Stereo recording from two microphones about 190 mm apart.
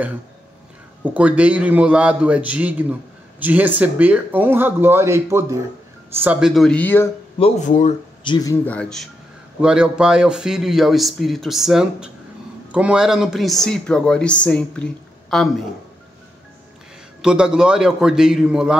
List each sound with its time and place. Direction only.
1.0 s a man's voice: 5° right (ahead or behind); by 7.1 s 10° left (ahead or behind)
7.3 s speech: 35° left (ahead or behind)
8.2 s speech: 20° left (ahead or behind)
8.6 s speech: 5° left (ahead or behind)
17.2 s speech: 5° right (ahead or behind)